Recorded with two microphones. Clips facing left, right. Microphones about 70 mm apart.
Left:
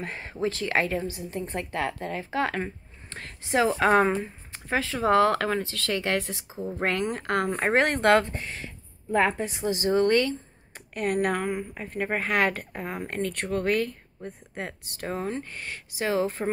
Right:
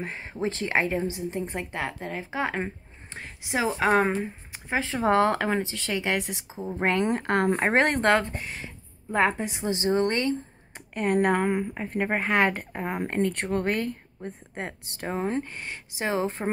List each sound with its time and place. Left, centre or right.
0.0 s a woman's voice: centre